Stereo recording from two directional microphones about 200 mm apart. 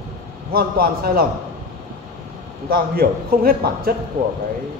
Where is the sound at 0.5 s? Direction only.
50° right (ahead or behind).